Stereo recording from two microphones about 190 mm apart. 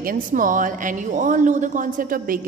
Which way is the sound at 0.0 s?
45° right (ahead or behind).